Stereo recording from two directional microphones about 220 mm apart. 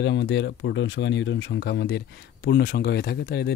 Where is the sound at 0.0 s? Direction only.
55° left (ahead or behind).